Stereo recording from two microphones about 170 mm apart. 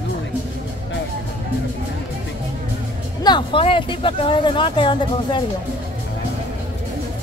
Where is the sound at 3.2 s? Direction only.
30° left (ahead or behind).